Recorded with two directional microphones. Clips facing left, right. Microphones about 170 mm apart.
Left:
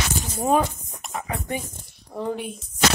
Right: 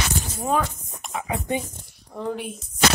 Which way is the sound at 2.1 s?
5° left (ahead or behind).